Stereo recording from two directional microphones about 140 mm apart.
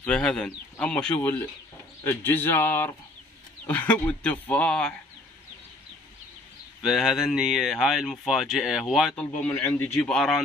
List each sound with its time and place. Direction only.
0.0 s a man's voice: 5° left (ahead or behind)
6.8 s speech: centre (ahead or behind)
9.1 s a man's voice: 10° left (ahead or behind)